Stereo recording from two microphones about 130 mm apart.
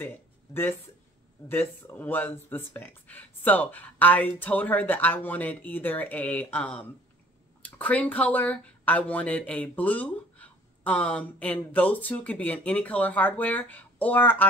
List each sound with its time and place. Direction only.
0.0 s speech: 15° left (ahead or behind)